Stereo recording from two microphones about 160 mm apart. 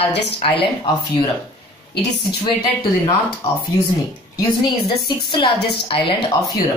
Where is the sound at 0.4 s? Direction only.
35° left (ahead or behind).